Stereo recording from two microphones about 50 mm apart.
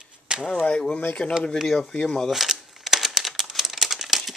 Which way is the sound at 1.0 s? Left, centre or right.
Left.